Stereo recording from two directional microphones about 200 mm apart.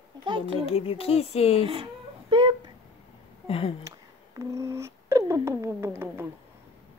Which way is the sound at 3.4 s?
30° left (ahead or behind).